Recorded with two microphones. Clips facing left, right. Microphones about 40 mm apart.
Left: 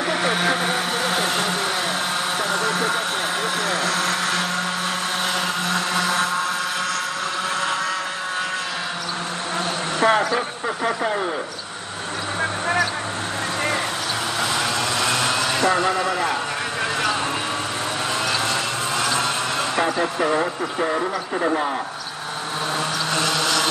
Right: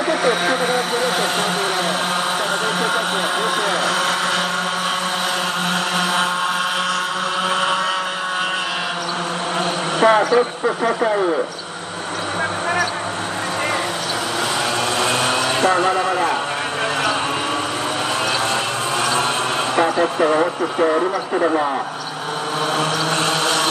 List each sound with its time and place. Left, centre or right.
0.1 s vehicle: centre
3.6 s blender: right
10.0 s speech: centre
15.0 s vehicle: right
19.8 s speech: centre
22.8 s mantra: right